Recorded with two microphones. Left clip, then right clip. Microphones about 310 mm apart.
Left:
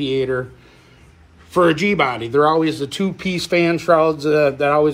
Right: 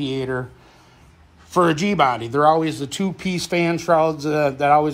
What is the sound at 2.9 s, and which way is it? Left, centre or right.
Speech, right.